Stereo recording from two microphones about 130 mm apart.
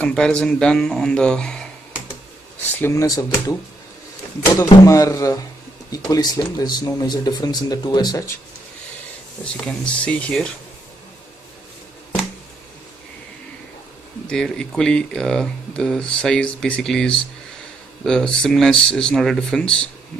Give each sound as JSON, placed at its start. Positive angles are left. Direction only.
{"t": 0.0, "sound": "speech", "side_deg": 5}
{"t": 2.8, "sound": "speech", "side_deg": 25}
{"t": 4.8, "sound": "speech", "side_deg": 25}
{"t": 9.4, "sound": "speech", "side_deg": 10}
{"t": 14.2, "sound": "speech", "side_deg": 5}